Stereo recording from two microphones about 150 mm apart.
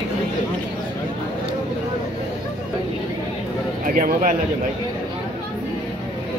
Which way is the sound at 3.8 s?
60° right (ahead or behind).